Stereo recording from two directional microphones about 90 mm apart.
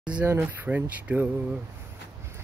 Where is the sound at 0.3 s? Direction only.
20° right (ahead or behind).